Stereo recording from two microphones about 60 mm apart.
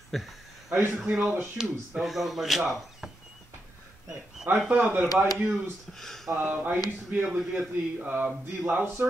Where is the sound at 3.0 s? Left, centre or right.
Centre.